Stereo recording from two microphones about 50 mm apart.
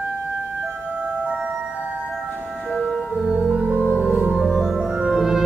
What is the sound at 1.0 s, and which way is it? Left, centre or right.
Music, right.